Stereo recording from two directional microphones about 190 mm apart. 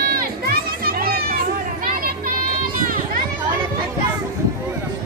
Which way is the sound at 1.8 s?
50° right (ahead or behind).